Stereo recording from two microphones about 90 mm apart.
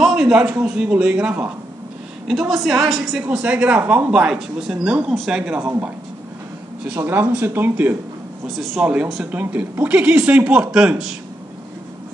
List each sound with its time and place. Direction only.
0.0 s a woman's voice: 5° right (ahead or behind)
2.2 s a woman's voice: 5° right (ahead or behind)
7.0 s speech: 25° right (ahead or behind)
8.5 s speech: centre (ahead or behind)
8.8 s a woman's voice: 15° right (ahead or behind)